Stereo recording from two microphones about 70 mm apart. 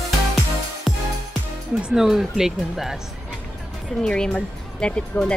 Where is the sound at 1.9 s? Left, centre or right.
Centre.